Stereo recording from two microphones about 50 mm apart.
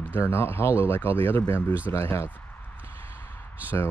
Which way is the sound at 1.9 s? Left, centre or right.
Left.